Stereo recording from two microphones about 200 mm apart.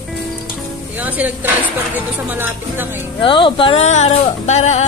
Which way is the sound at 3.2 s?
25° left (ahead or behind).